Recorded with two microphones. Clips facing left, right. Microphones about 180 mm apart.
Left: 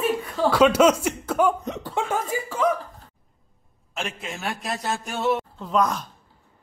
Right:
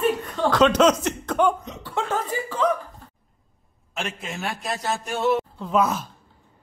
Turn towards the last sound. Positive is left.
turn(degrees=-5)  # may be behind; listen again after turning